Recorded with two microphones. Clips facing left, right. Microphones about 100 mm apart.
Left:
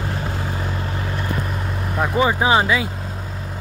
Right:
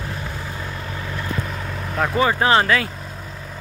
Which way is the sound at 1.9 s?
10° left (ahead or behind).